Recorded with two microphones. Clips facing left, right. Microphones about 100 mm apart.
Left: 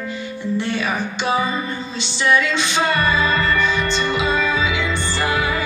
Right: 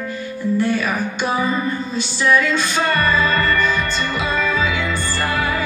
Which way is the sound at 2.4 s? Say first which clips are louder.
Right 2 dB; 45° right (ahead or behind).